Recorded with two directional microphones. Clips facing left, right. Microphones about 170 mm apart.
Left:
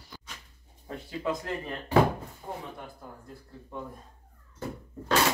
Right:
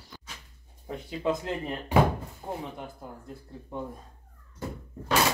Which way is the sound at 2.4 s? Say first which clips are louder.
Right 3 dB; 25° right (ahead or behind).